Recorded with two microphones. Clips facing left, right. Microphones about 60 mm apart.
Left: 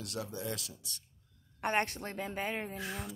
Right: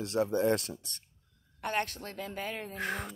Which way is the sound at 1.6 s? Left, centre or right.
Left.